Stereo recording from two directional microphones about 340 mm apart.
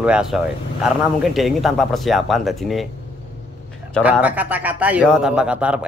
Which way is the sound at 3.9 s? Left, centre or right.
Centre.